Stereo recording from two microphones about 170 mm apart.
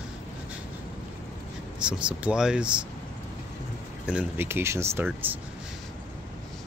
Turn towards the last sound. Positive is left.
turn(degrees=-10)  # may be behind; listen again after turning